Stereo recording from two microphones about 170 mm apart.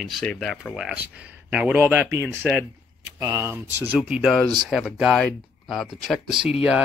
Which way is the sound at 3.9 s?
5° right (ahead or behind).